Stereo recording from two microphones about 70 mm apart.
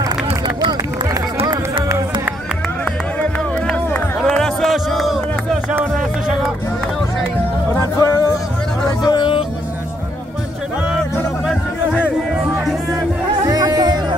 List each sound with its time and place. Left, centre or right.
3.2 s music: centre
4.4 s music: centre
8.0 s music: left
8.8 s hubbub: left
13.5 s music: right